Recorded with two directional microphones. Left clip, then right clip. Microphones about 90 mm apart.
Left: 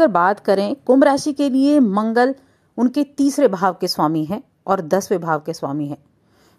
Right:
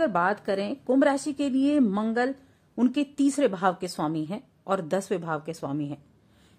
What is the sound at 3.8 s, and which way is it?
A woman's voice, 65° left (ahead or behind).